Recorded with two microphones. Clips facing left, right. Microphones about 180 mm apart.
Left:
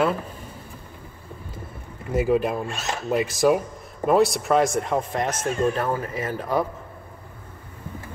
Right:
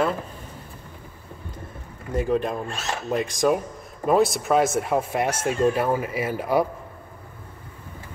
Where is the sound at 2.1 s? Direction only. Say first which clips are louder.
Left 2 dB; 5° left (ahead or behind); by 6.7 s 10° right (ahead or behind).